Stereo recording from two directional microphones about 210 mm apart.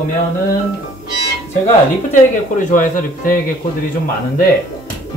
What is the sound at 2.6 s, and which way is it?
Speech, 40° left (ahead or behind).